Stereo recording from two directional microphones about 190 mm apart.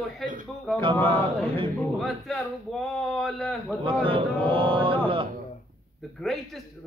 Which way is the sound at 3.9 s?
25° right (ahead or behind).